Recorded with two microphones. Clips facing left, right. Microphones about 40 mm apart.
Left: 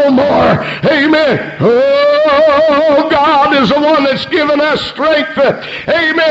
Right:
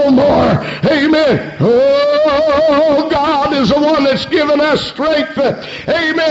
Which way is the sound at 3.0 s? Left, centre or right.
Left.